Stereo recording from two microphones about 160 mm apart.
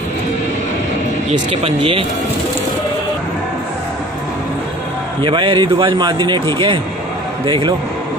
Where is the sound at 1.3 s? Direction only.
35° right (ahead or behind).